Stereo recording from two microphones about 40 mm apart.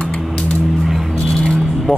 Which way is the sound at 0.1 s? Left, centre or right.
Centre.